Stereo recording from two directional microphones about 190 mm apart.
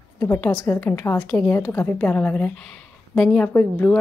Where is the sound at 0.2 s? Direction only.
15° left (ahead or behind).